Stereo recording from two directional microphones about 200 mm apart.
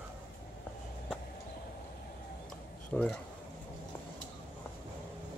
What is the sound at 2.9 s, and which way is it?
Speech, 5° left (ahead or behind).